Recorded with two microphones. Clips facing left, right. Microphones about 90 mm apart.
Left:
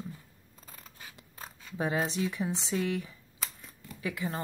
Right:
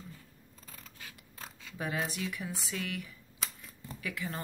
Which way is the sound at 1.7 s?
25° left (ahead or behind).